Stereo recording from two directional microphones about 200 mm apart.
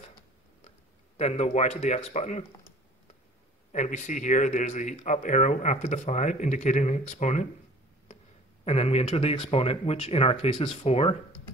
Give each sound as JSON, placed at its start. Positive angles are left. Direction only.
{"t": 1.1, "sound": "speech", "side_deg": 35}
{"t": 3.7, "sound": "speech", "side_deg": 35}
{"t": 8.6, "sound": "speech", "side_deg": 30}